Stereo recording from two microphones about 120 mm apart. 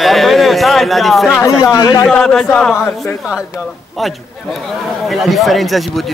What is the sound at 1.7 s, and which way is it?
Speech, 30° left (ahead or behind).